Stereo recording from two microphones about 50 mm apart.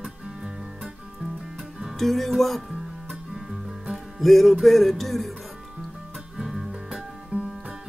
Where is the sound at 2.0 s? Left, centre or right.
Centre.